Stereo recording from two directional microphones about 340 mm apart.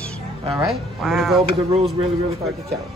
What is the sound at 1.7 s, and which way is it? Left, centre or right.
Speech, centre.